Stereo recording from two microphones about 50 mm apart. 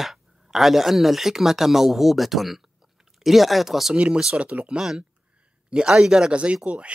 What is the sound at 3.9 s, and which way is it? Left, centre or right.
Speech, right.